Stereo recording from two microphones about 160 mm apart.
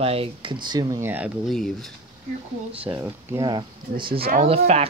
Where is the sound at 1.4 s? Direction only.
Centre (ahead or behind).